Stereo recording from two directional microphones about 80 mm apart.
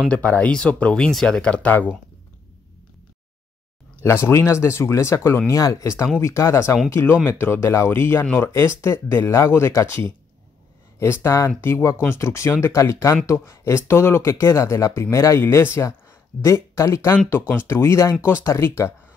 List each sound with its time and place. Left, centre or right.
0.1 s speech: centre
4.0 s speech: left